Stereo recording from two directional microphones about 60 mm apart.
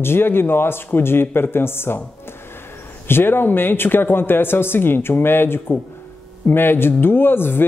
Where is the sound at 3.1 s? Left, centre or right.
Left.